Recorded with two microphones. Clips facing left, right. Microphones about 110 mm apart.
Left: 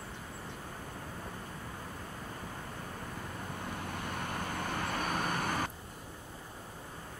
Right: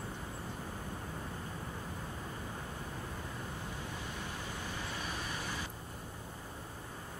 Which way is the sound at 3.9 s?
55° left (ahead or behind).